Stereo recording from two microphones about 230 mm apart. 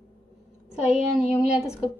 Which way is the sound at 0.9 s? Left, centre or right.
Centre.